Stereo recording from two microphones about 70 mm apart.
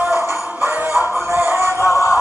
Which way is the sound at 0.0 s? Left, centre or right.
Right.